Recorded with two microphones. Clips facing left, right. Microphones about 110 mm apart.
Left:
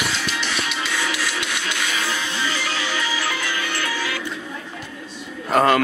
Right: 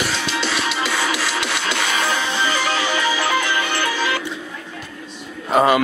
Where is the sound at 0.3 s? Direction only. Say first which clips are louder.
Right 4 dB; 30° right (ahead or behind).